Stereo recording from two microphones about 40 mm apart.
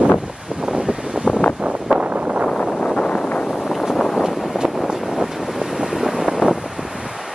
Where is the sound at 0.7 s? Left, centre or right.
Right.